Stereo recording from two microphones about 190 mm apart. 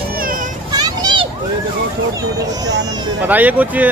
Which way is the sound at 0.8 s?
20° right (ahead or behind).